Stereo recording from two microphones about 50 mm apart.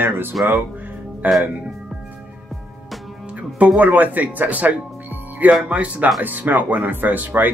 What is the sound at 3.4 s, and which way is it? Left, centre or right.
Speech, right.